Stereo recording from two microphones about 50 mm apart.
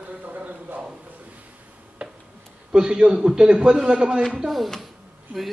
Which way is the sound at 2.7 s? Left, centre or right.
Centre.